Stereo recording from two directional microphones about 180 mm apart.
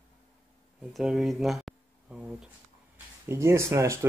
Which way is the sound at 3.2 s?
15° right (ahead or behind).